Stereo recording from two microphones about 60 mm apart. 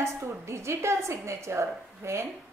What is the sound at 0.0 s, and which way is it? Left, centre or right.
A woman's voice, right.